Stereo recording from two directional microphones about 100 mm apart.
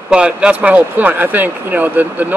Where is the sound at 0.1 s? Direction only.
10° right (ahead or behind).